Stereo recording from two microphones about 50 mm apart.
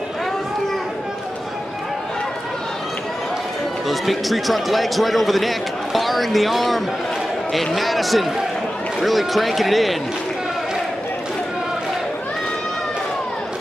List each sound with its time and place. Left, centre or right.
3.9 s speech: centre